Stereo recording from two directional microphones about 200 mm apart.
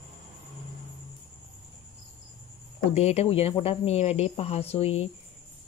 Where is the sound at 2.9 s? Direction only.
30° left (ahead or behind).